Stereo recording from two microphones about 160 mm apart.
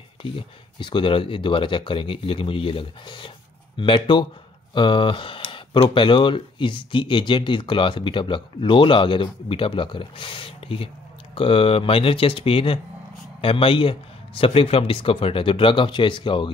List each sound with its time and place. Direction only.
0.2 s speech: 30° left (ahead or behind)